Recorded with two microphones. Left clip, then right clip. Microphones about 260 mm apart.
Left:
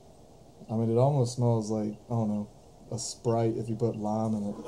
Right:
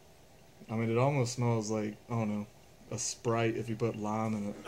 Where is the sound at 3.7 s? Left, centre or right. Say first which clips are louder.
Left 4 dB; right.